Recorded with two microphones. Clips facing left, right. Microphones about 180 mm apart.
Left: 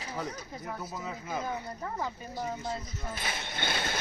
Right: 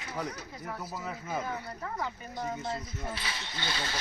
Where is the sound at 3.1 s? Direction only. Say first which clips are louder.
Left 2 dB; 50° left (ahead or behind).